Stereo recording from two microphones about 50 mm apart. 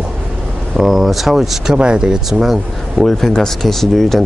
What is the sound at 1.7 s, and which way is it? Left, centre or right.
Speech, centre.